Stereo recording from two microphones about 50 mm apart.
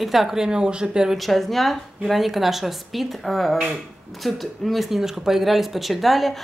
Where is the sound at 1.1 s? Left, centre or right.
Centre.